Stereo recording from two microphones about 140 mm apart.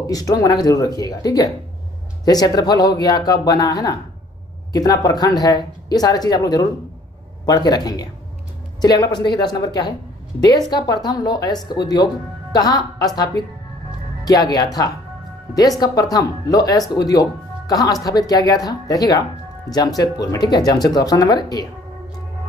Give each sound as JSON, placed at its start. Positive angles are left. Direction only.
{"t": 0.0, "sound": "speech", "side_deg": 25}
{"t": 15.8, "sound": "speech", "side_deg": 25}